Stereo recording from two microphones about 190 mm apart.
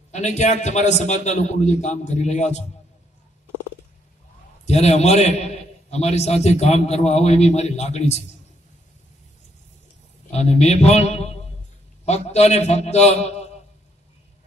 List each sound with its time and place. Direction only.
0.1 s a man's voice: 40° left (ahead or behind)
4.6 s a man's voice: 35° left (ahead or behind)
10.3 s a man's voice: 35° left (ahead or behind)